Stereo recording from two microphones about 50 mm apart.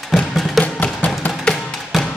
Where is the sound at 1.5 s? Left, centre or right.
Centre.